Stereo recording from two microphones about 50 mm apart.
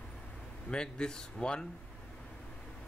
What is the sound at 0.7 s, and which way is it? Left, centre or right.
Speech, centre.